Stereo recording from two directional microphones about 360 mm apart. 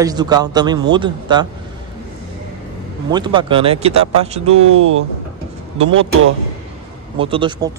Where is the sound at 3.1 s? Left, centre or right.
Centre.